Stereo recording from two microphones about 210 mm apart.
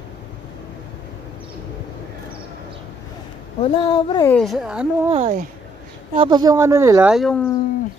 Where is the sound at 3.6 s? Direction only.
25° left (ahead or behind).